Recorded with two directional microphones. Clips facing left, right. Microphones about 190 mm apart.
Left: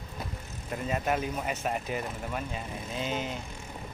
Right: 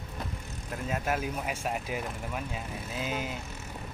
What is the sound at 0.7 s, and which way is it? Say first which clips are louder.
Speech: left 2 dB; centre (ahead or behind).